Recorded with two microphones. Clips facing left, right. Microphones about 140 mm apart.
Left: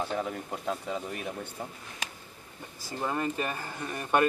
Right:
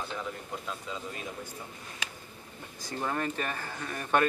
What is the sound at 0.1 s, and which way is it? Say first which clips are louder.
Speech: left 5 dB; 55° left (ahead or behind).